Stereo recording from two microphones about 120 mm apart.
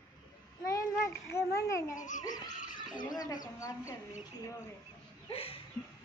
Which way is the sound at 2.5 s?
90° left.